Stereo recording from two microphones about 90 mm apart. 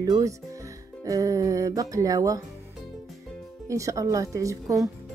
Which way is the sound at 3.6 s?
35° right (ahead or behind).